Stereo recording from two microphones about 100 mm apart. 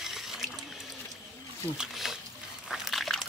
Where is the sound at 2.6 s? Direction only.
5° right (ahead or behind).